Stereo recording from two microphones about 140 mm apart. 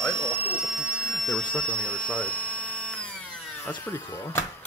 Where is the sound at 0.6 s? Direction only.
Centre (ahead or behind).